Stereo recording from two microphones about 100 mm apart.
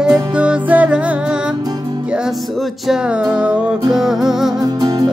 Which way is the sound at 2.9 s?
10° right (ahead or behind).